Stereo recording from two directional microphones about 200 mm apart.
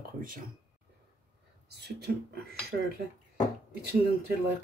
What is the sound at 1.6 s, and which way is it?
Speech, 55° right (ahead or behind).